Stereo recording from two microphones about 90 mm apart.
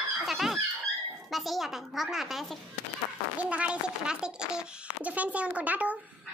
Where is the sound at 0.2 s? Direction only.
Centre (ahead or behind).